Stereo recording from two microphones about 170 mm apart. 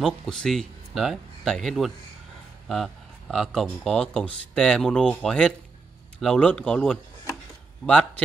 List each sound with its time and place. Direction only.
0.0 s speech: centre (ahead or behind)